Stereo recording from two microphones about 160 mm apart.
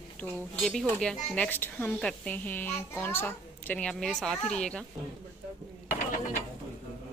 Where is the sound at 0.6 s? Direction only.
5° left (ahead or behind).